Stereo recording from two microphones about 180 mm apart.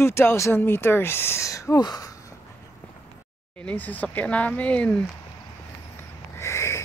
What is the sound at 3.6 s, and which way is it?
Speech, 10° left (ahead or behind).